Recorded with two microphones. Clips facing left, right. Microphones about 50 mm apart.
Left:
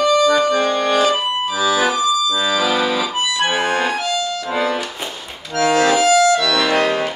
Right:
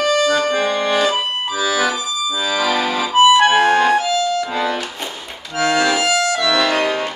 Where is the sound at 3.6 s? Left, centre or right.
Centre.